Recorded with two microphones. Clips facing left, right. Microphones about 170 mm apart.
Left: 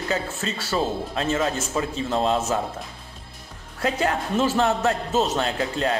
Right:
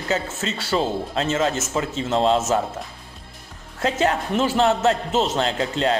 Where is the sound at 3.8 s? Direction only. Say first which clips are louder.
Right 2 dB; 25° right (ahead or behind).